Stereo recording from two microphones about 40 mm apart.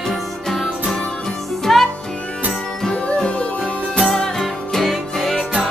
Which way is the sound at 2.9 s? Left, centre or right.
Left.